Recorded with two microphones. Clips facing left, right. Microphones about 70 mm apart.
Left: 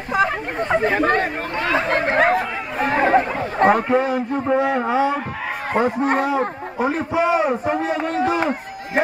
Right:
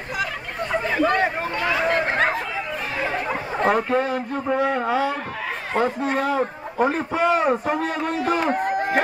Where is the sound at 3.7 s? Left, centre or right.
Centre.